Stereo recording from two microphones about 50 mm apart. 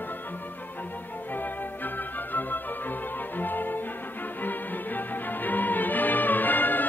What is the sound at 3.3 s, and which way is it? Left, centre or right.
Music, left.